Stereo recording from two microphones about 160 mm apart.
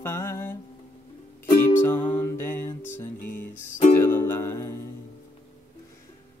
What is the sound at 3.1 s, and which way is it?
Music, 55° left (ahead or behind).